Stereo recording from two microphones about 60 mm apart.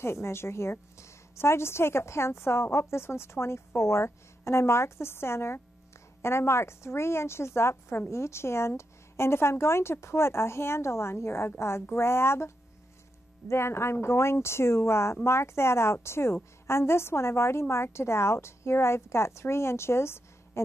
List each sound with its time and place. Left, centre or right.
0.0 s a woman's voice: left